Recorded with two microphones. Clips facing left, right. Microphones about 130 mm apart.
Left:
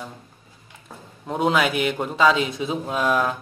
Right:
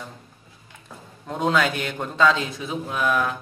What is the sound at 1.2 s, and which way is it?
A man's voice, 10° left (ahead or behind).